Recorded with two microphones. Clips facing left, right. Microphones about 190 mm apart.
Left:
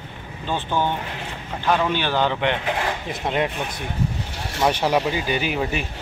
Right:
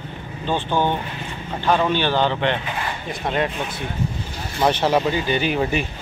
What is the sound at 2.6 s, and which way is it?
Speech, 90° left.